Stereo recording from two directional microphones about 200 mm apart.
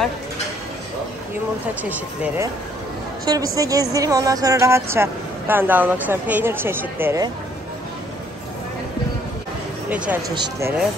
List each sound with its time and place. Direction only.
1.8 s a woman's voice: 10° right (ahead or behind)
9.8 s speech: 5° right (ahead or behind)
10.3 s speech: 20° right (ahead or behind)